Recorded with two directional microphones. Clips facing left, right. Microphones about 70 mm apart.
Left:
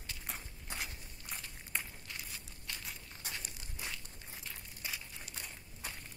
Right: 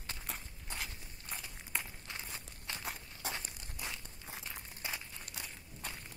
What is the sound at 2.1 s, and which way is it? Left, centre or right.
Walk, right.